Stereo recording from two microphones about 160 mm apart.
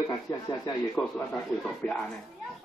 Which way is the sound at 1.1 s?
5° left (ahead or behind).